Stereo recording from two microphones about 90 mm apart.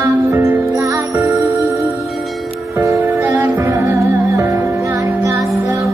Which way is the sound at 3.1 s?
30° right (ahead or behind).